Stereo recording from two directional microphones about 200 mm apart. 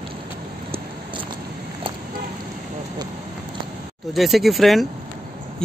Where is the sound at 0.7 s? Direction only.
25° right (ahead or behind).